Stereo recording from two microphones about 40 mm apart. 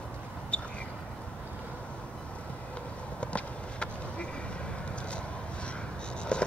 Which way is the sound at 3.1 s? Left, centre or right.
Left.